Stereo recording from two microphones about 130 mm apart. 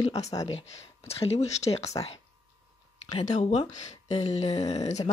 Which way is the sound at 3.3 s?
60° left (ahead or behind).